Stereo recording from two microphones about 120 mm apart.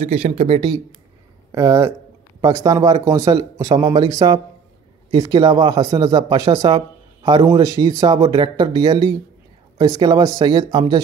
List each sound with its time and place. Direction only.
0.0 s speech: 60° right (ahead or behind)
1.5 s speech: 25° right (ahead or behind)